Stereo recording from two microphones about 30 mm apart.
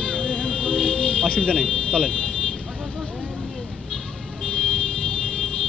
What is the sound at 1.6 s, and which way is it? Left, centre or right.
Speech, left.